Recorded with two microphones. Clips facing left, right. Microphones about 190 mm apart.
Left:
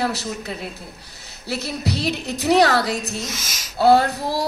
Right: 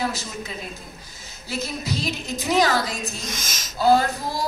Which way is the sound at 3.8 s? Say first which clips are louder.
Left 3 dB; 65° left (ahead or behind).